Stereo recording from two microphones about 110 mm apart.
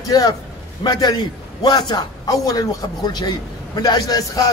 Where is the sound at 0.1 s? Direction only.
35° left (ahead or behind).